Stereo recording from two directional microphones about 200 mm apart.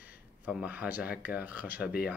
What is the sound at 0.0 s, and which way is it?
Speech, 5° right (ahead or behind).